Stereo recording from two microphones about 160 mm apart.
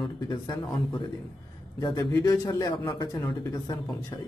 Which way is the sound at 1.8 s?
25° left (ahead or behind).